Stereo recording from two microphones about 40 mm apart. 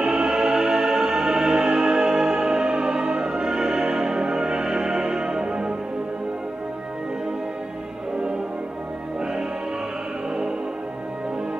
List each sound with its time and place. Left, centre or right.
0.0 s music: centre